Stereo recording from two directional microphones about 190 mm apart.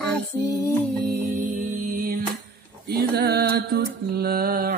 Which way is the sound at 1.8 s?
50° right (ahead or behind).